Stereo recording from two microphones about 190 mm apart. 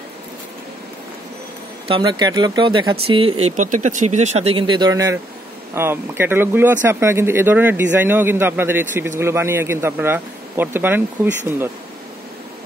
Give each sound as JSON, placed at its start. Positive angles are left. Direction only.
{"t": 1.9, "sound": "speech", "side_deg": -25}